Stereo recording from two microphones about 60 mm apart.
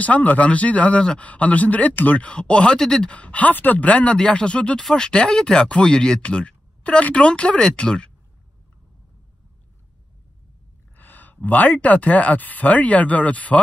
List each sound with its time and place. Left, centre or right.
0.0 s speech: left
11.0 s speech: left